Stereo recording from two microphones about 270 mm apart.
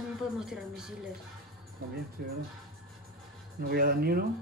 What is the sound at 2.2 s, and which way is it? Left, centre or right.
Speech, right.